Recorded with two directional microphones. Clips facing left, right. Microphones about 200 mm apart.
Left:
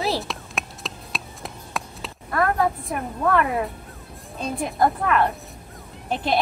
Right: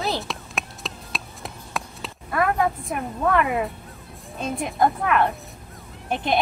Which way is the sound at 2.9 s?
Centre (ahead or behind).